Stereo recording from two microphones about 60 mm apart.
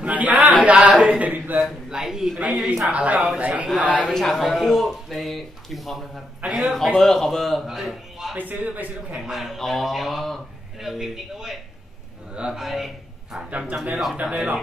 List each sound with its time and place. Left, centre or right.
0.0 s chant: right
0.7 s mantra: centre
1.6 s speech: centre
2.9 s a man's voice: right
4.1 s a man's voice: centre
8.4 s a man's voice: right
9.1 s speech: centre
12.5 s speech: centre
13.5 s a man's voice: right
14.2 s speech: centre